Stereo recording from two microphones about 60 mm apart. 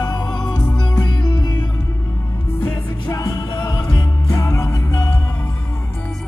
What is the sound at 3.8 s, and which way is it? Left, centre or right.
Music, left.